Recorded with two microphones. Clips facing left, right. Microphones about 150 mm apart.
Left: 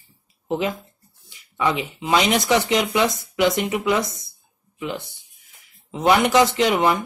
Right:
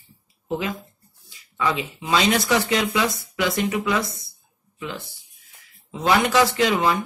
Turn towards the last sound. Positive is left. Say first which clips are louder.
# left 2 dB
turn(degrees=20)  # may be behind; listen again after turning